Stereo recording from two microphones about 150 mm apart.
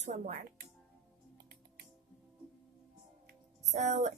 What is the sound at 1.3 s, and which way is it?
Music, 90° right.